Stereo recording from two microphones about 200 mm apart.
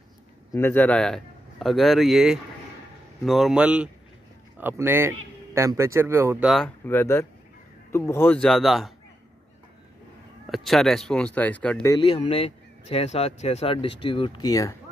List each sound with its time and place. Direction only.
0.5 s a man's voice: 10° left (ahead or behind)
10.5 s speech: centre (ahead or behind)
11.9 s speech: 25° left (ahead or behind)